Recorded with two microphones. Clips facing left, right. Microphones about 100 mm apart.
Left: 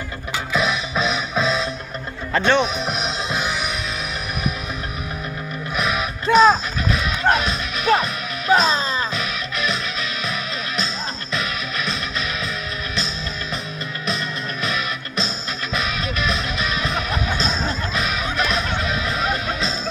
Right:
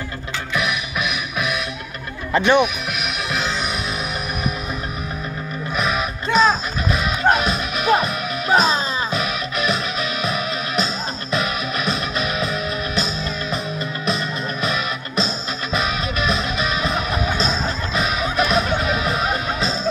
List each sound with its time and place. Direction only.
0.5 s music: 25° left (ahead or behind)
2.3 s speech: 15° right (ahead or behind)
3.0 s music: 20° left (ahead or behind)
5.8 s music: centre (ahead or behind)
11.3 s music: 10° right (ahead or behind)
14.6 s music: 5° right (ahead or behind)